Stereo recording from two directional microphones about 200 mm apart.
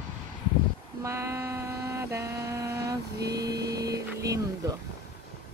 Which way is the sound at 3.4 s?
20° right (ahead or behind).